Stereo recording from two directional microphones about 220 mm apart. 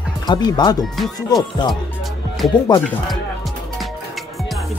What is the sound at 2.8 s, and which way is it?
Music, centre (ahead or behind).